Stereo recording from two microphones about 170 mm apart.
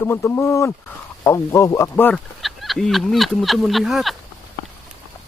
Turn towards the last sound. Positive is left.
turn(degrees=0)  # may be behind; listen again after turning